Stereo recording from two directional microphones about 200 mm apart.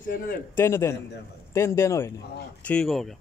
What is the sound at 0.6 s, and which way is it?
A man's voice, 10° left (ahead or behind).